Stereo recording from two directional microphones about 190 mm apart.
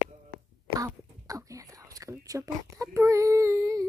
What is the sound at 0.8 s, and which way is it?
Speech, 20° right (ahead or behind).